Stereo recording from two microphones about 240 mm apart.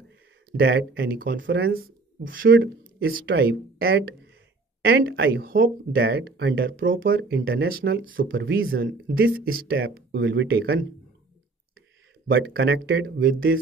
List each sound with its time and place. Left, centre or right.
0.5 s speech: right
9.8 s speech: right
12.3 s speech: right